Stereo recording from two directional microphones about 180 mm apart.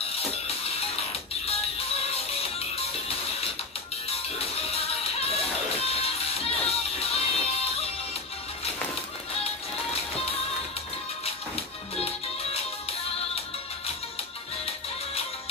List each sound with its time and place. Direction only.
0.0 s music: 35° left (ahead or behind)
11.2 s music: 35° left (ahead or behind)